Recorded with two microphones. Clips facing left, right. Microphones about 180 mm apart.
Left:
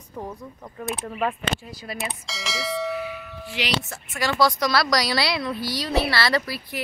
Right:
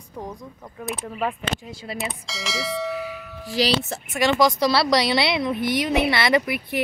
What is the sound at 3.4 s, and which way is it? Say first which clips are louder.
Speech: right 8 dB; 35° right (ahead or behind).